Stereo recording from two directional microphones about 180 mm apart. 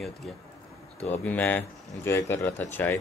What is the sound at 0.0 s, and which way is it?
Speech, centre (ahead or behind).